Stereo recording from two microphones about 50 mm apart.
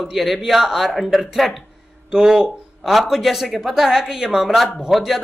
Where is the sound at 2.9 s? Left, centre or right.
Centre.